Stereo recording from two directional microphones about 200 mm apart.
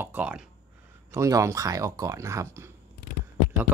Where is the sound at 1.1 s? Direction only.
15° right (ahead or behind).